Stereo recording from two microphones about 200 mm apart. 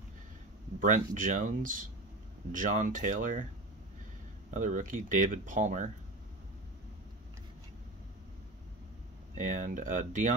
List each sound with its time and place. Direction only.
0.7 s speech: 40° right (ahead or behind)
4.6 s speech: 40° right (ahead or behind)
9.3 s speech: 40° right (ahead or behind)